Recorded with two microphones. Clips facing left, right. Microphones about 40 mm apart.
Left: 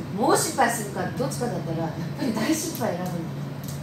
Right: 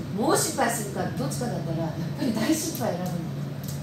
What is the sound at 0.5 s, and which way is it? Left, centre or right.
A woman's voice, centre.